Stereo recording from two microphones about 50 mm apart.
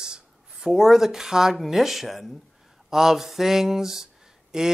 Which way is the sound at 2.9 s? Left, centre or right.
Centre.